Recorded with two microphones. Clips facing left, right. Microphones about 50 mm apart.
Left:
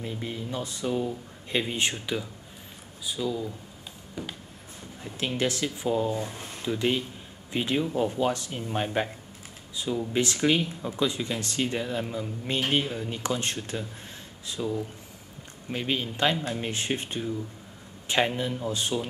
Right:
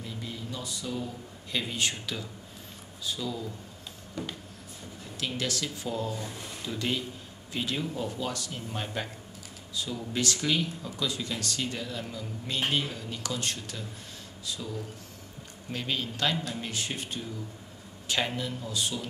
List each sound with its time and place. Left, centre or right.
0.0 s speech: left
3.1 s speech: centre
5.0 s speech: left